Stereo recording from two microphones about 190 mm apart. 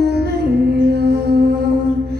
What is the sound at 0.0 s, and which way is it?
Music, 60° right (ahead or behind).